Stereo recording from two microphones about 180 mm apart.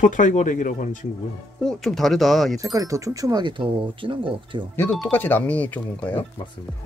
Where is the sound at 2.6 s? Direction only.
20° right (ahead or behind).